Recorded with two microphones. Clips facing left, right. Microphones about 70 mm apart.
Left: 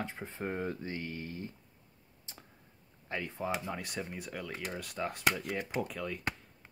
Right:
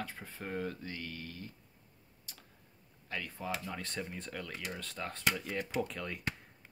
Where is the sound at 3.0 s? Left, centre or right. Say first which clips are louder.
Left 3 dB; left; by 6.2 s centre.